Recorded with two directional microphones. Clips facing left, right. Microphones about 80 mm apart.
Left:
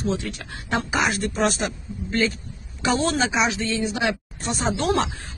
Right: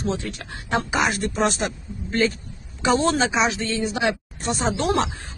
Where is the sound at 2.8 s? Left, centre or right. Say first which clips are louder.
Right 2 dB; right.